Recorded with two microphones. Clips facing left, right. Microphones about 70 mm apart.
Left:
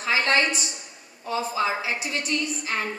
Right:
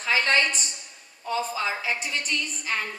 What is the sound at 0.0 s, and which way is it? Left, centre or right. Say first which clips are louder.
A woman's voice: left 1 dB; centre.